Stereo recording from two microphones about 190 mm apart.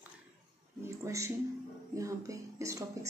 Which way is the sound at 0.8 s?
15° right (ahead or behind).